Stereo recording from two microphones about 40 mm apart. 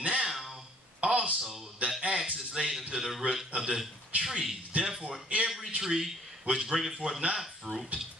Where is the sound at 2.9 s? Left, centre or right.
Centre.